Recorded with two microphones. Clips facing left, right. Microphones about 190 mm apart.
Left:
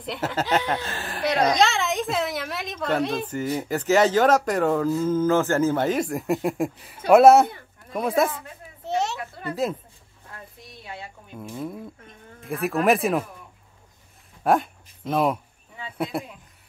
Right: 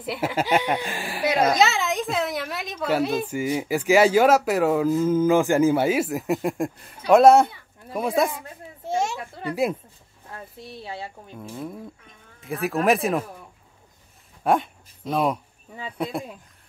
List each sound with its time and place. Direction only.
0.0 s speech: 10° right (ahead or behind)
8.3 s a sound: 10° right (ahead or behind)
10.3 s speech: 30° right (ahead or behind)
11.5 s speech: centre (ahead or behind)
14.4 s a sound: centre (ahead or behind)
16.0 s speech: 5° left (ahead or behind)